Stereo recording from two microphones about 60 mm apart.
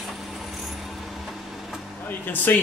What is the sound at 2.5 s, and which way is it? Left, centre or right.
Speech, left.